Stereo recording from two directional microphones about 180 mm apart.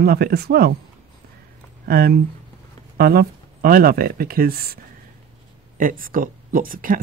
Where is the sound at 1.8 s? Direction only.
60° right (ahead or behind).